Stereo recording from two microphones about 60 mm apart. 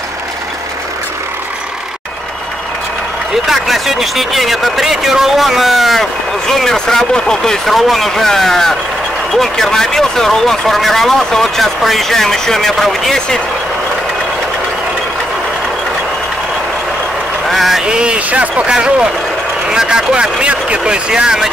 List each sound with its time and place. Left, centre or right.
3.4 s speech: centre
17.5 s a sound: centre
17.8 s speech: centre